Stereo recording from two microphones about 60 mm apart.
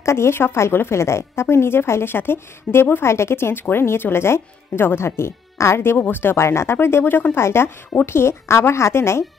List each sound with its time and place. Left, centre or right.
0.0 s speech: left